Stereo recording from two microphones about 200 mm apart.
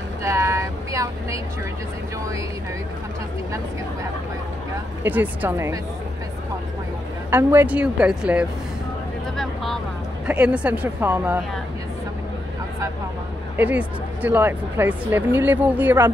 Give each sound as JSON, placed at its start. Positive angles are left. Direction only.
{"t": 0.2, "sound": "vehicle", "side_deg": -15}
{"t": 5.0, "sound": "speech", "side_deg": -10}
{"t": 7.2, "sound": "a woman's voice", "side_deg": -10}
{"t": 13.6, "sound": "speech", "side_deg": -10}